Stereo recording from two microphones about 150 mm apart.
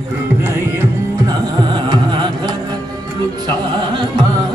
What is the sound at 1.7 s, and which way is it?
Carnatic music, 30° right (ahead or behind).